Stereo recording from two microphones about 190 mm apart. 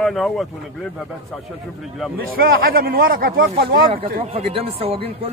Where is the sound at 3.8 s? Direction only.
30° right (ahead or behind).